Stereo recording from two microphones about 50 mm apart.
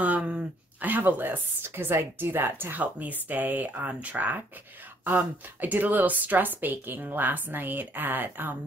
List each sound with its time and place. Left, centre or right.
0.0 s speech: right
1.6 s speech: right
2.8 s a woman's voice: right